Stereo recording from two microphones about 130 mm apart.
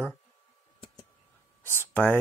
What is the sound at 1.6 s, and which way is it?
Speech, 15° left (ahead or behind).